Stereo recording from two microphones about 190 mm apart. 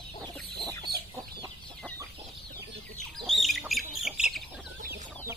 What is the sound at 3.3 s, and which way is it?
Chicken, centre (ahead or behind).